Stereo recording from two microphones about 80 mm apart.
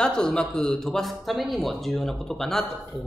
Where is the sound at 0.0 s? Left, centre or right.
Centre.